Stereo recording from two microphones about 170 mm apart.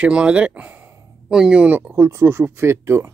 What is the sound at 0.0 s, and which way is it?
Speech, 5° right (ahead or behind).